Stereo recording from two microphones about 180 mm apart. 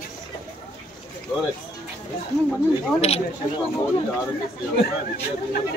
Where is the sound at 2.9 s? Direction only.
35° left (ahead or behind).